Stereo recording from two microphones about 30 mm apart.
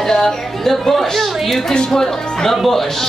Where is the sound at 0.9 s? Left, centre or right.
Centre.